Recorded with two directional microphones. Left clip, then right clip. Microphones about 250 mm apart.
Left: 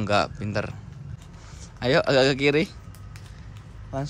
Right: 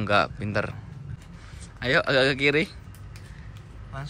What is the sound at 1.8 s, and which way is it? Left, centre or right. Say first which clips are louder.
Speech: left 2 dB; centre.